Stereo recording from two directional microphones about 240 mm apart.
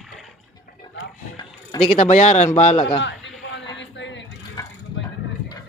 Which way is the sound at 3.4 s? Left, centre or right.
Left.